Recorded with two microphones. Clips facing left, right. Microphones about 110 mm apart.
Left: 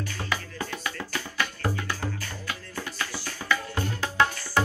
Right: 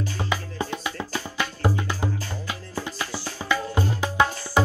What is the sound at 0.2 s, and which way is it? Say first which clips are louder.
Music: right 3 dB; 20° right (ahead or behind).